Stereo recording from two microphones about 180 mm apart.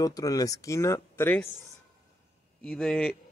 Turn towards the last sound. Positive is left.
turn(degrees=5)  # may be behind; listen again after turning